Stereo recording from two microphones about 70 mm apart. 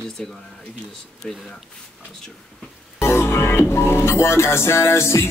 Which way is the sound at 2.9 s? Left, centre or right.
Left.